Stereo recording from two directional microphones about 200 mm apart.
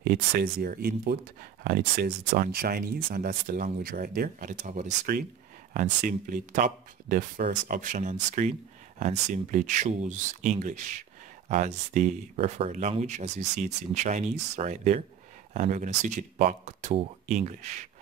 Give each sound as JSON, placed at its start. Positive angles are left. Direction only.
{"t": 0.0, "sound": "speech", "side_deg": -50}